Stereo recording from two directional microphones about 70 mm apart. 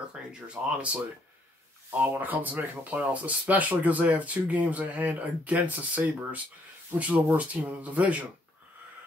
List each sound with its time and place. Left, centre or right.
0.1 s speech: centre